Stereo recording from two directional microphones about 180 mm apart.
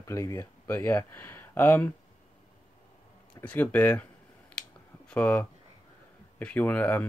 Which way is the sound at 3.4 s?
10° left (ahead or behind).